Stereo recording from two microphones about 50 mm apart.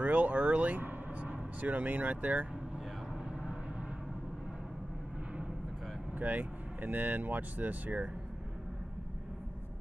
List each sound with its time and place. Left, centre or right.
0.0 s speech: right
6.1 s speech: right